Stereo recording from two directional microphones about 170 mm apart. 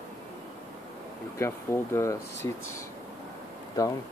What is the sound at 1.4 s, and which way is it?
Speech, 15° left (ahead or behind).